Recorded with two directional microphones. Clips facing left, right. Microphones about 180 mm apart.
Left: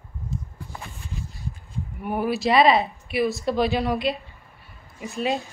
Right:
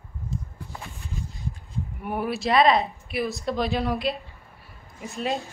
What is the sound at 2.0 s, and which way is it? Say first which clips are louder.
Speech: left 4 dB; centre (ahead or behind).